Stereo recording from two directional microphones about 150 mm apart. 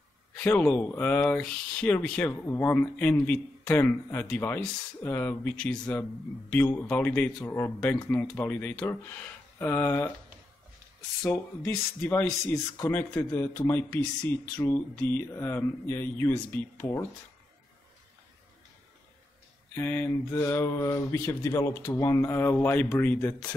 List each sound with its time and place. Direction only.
0.4 s speech: 10° left (ahead or behind)
11.2 s speech: 10° left (ahead or behind)
19.7 s speech: 15° left (ahead or behind)